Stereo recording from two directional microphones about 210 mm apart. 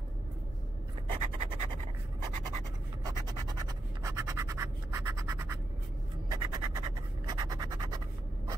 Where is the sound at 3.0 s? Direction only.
15° right (ahead or behind).